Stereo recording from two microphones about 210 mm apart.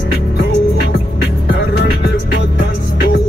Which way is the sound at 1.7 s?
50° left (ahead or behind).